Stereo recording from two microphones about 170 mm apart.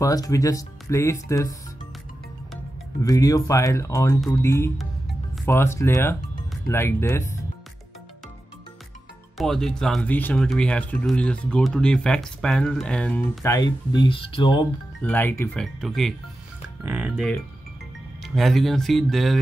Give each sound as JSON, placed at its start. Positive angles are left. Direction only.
{"t": 0.0, "sound": "speech", "side_deg": 20}
{"t": 3.0, "sound": "speech", "side_deg": 20}
{"t": 9.4, "sound": "speech", "side_deg": 0}
{"t": 13.9, "sound": "speech", "side_deg": 30}
{"t": 15.0, "sound": "speech", "side_deg": 10}
{"t": 15.6, "sound": "speech", "side_deg": 0}
{"t": 18.2, "sound": "speech", "side_deg": 0}